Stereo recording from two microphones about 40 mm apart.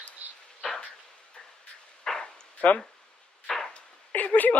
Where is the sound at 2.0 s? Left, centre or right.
Centre.